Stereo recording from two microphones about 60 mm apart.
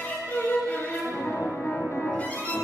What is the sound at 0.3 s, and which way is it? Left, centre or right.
Music, left.